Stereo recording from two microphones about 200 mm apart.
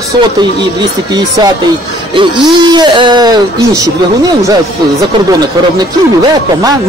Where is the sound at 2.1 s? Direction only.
20° right (ahead or behind).